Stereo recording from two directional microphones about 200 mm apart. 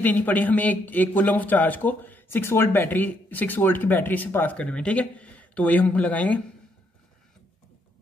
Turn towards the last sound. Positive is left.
turn(degrees=5)  # may be behind; listen again after turning